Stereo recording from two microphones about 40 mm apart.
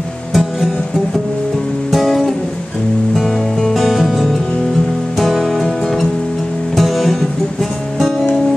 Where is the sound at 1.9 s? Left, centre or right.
Centre.